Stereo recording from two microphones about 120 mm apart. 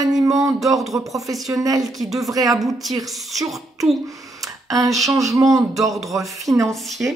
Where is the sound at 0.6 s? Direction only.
Centre (ahead or behind).